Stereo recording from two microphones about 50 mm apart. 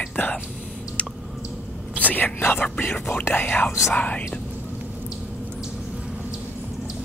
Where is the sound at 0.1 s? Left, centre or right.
Left.